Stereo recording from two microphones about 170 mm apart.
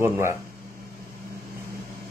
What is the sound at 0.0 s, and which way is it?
Speech, 15° right (ahead or behind).